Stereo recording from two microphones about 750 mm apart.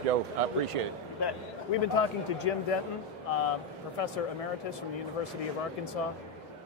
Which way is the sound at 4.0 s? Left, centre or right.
Left.